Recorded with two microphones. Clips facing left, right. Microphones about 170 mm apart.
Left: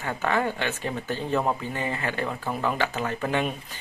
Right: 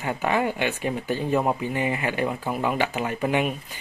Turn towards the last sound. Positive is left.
turn(degrees=-15)  # may be behind; listen again after turning